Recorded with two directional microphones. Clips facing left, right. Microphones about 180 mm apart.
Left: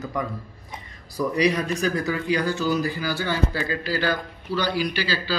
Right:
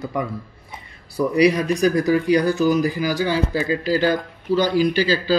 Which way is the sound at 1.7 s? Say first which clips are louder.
Right 7 dB; 35° right (ahead or behind).